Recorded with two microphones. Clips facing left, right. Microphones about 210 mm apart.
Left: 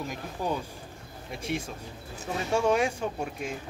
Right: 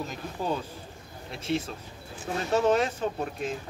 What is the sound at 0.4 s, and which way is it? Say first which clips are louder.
Speech: right 1 dB; 10° left (ahead or behind).